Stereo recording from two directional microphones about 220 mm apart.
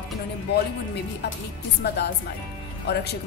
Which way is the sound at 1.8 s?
45° left (ahead or behind).